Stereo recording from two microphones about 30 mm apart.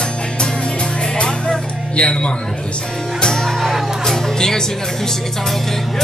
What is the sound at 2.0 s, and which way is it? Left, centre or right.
Speech, left.